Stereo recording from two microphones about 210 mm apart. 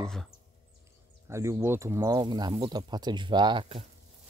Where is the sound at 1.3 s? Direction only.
15° right (ahead or behind).